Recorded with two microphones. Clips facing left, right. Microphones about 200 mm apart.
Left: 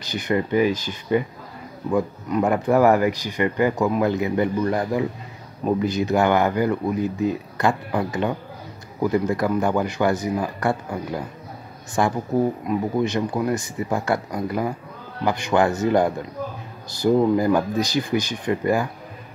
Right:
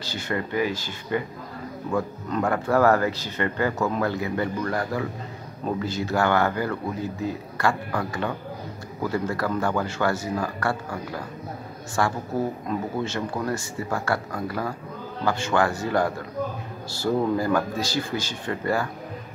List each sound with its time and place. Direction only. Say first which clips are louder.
0.0 s speech: left 6 dB; 15° left (ahead or behind)